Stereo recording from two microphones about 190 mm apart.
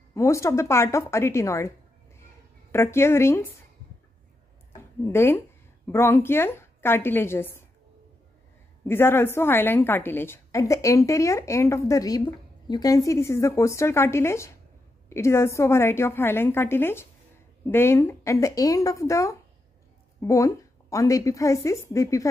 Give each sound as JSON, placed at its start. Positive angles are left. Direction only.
{"t": 0.1, "sound": "a woman's voice", "side_deg": 15}
{"t": 2.7, "sound": "a woman's voice", "side_deg": 15}
{"t": 5.0, "sound": "a woman's voice", "side_deg": 10}
{"t": 8.8, "sound": "a woman's voice", "side_deg": 10}